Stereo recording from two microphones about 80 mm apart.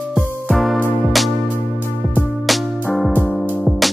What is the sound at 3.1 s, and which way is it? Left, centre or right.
Music, left.